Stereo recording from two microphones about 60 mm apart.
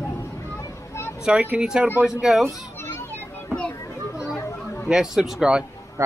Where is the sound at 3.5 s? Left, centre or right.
Left.